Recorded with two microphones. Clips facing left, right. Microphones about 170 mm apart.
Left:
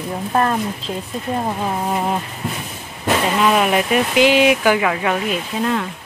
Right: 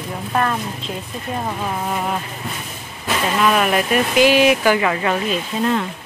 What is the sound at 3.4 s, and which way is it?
Speech, 15° left (ahead or behind).